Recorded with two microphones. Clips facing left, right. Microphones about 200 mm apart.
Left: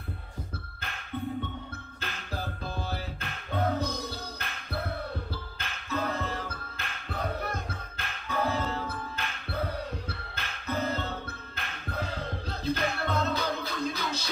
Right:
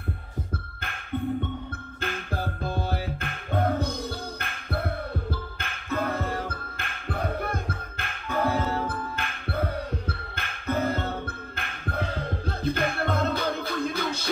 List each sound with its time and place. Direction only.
2.0 s music: 50° right (ahead or behind)